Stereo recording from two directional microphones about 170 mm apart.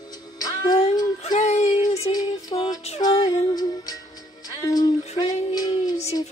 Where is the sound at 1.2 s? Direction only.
40° left (ahead or behind).